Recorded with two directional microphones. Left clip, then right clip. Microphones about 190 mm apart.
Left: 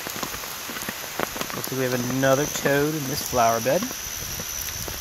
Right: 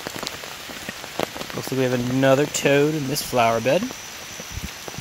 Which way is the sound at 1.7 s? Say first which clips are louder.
Right 3 dB; 35° right (ahead or behind).